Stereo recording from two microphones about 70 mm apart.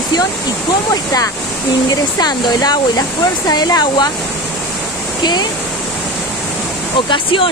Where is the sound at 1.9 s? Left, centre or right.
Left.